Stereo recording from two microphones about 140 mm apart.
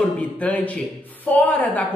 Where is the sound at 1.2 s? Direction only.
10° left (ahead or behind).